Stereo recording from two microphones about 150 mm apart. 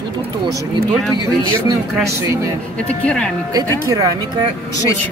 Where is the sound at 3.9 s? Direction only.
20° right (ahead or behind).